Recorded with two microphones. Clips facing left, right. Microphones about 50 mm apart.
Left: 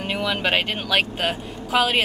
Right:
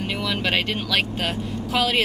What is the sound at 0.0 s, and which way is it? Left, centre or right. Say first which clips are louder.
Speech: left 2 dB; centre.